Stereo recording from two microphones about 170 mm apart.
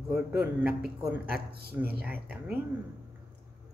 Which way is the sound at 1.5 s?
65° right (ahead or behind).